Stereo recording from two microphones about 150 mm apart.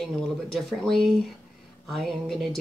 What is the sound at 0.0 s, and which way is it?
Speech, centre (ahead or behind).